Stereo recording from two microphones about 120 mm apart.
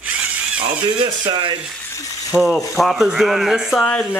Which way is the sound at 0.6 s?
45° right (ahead or behind).